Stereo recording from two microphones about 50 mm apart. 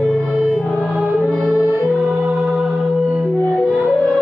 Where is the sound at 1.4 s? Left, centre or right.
Right.